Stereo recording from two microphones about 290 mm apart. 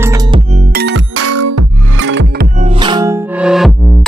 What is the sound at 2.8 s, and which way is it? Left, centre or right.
Music, centre.